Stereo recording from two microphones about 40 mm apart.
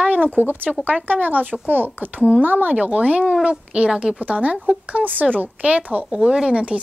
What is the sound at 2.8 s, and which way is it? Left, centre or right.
A woman's voice, right.